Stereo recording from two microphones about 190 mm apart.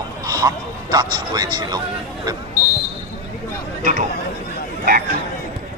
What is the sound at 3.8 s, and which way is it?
Speech, 40° right (ahead or behind).